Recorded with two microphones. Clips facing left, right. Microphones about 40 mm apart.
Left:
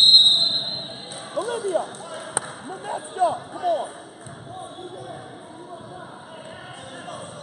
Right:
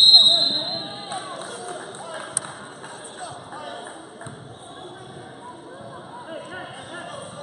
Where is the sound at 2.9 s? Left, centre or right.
Left.